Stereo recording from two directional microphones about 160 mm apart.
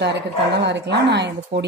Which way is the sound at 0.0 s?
90° right.